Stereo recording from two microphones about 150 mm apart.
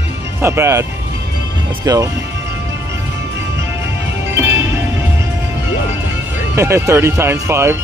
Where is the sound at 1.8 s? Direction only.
20° right (ahead or behind).